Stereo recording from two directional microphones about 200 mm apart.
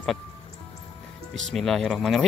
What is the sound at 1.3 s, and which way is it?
Speech, centre (ahead or behind).